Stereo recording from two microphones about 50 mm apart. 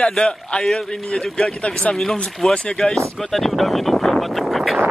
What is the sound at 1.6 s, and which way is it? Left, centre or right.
Speech, centre.